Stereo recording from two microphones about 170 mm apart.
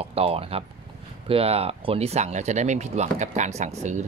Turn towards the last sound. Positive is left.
turn(degrees=-45)  # may be behind; listen again after turning